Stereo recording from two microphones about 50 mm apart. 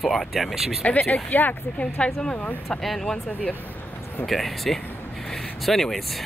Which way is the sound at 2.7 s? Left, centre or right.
Centre.